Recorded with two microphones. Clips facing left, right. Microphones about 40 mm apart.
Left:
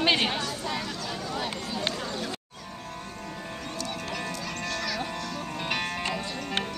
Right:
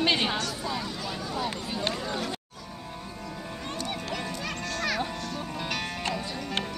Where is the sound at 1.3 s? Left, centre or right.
Left.